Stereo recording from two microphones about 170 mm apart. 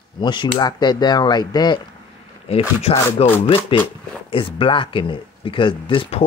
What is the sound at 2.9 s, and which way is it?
Speech, 40° left (ahead or behind).